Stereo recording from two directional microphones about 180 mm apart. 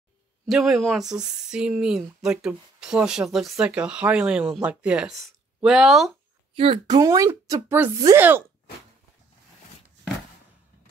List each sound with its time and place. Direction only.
0.5 s speech: centre (ahead or behind)
6.5 s speech: 30° right (ahead or behind); by 8.5 s 10° right (ahead or behind)